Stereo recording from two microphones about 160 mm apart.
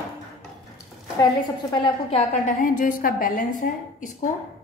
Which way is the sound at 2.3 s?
55° left (ahead or behind).